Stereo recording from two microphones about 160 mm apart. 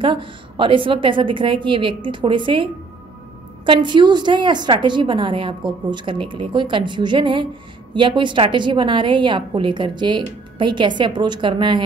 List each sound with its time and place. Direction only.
0.0 s a woman's voice: 30° right (ahead or behind)